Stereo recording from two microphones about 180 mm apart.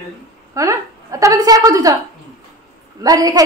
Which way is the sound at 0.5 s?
15° right (ahead or behind).